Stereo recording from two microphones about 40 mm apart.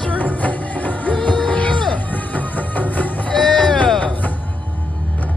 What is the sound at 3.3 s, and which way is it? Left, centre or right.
Run, centre.